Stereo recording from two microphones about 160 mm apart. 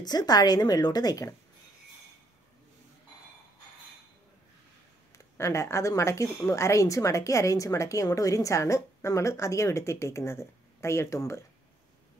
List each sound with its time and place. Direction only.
0.0 s a woman's voice: 25° left (ahead or behind)
5.1 s a woman's voice: 20° left (ahead or behind)